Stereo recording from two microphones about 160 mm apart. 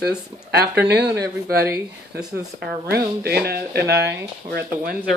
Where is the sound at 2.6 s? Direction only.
85° right.